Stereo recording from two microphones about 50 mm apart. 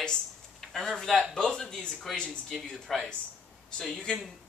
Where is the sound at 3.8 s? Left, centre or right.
Centre.